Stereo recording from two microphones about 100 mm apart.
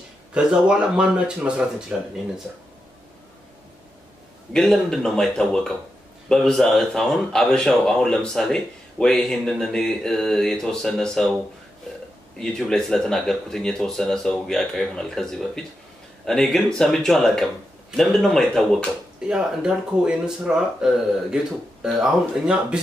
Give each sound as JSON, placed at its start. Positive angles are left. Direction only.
{"t": 0.3, "sound": "speech", "side_deg": -10}
{"t": 4.5, "sound": "speech", "side_deg": 5}
{"t": 12.4, "sound": "speech", "side_deg": 5}
{"t": 19.2, "sound": "speech", "side_deg": -10}